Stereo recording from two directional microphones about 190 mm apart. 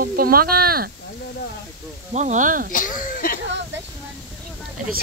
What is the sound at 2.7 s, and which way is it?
Speech, 45° left (ahead or behind).